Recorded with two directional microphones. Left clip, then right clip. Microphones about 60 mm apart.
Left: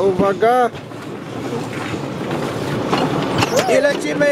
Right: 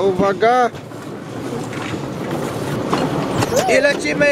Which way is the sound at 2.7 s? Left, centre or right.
Centre.